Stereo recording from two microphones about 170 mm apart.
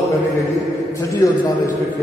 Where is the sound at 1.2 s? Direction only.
20° left (ahead or behind).